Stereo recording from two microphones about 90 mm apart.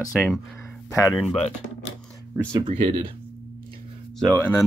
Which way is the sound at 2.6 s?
70° right (ahead or behind).